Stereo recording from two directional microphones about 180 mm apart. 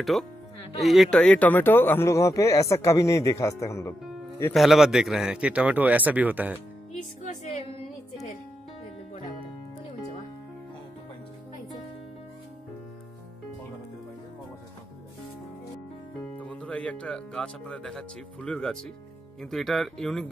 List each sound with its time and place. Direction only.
0.0 s speech: centre (ahead or behind); by 3.9 s 15° left (ahead or behind)
4.6 s speech: centre (ahead or behind)
7.2 s music: 40° left (ahead or behind)
16.3 s speech: 5° left (ahead or behind)